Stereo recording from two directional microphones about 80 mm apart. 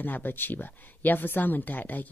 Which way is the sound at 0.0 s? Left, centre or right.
Left.